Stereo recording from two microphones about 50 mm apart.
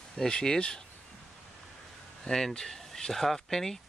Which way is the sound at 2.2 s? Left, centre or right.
Centre.